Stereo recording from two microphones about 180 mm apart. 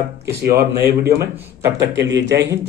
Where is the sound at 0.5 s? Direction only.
15° right (ahead or behind).